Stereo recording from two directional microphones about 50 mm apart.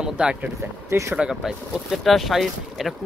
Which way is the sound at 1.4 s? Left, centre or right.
Centre.